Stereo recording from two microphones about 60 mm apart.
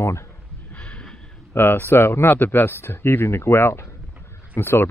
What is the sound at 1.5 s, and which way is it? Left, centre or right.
Speech, left.